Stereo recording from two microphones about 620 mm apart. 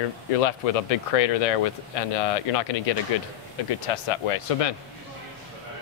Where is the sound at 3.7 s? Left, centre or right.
Left.